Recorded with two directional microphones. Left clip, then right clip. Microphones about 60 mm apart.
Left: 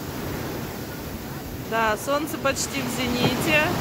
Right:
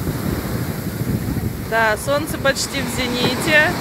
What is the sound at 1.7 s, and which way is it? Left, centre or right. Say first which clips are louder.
Speech: right 5 dB; centre.